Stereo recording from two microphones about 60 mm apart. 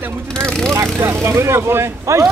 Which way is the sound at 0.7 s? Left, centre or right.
Right.